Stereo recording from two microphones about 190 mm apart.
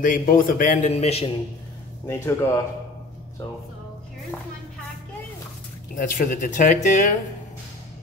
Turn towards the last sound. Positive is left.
turn(degrees=40)  # may be behind; listen again after turning